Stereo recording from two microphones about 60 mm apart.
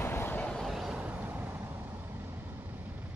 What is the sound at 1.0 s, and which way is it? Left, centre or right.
Vehicle, right.